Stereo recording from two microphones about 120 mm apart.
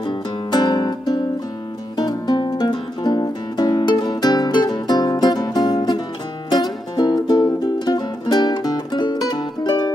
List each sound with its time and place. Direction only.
0.0 s music: 40° left (ahead or behind)